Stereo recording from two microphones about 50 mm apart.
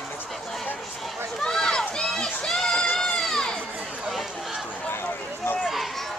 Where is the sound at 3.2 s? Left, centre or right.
Centre.